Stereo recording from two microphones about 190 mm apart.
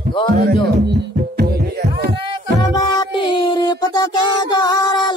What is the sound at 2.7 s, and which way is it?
Music, 25° left (ahead or behind).